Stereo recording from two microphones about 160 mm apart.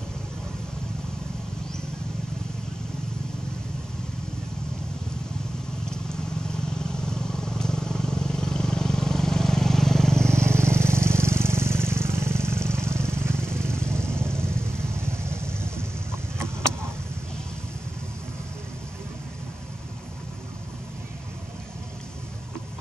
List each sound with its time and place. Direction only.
5.9 s vehicle: 5° left (ahead or behind)
10.8 s vehicle: 15° right (ahead or behind)
12.5 s vehicle: 5° left (ahead or behind)
13.1 s vehicle: 15° right (ahead or behind)
13.4 s vehicle: 5° left (ahead or behind)
15.0 s vehicle: 15° right (ahead or behind)